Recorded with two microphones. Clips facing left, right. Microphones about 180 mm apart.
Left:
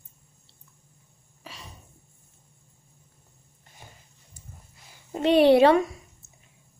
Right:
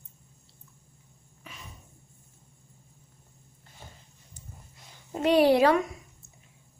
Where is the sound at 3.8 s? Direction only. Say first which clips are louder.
Right 1 dB; 15° left (ahead or behind).